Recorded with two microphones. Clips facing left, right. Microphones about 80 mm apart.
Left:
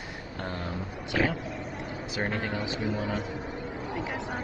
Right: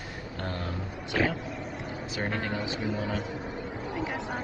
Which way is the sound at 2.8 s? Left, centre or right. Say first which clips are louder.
Left 1 dB; left.